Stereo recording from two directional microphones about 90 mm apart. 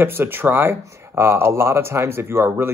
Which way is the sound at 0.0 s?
25° right (ahead or behind).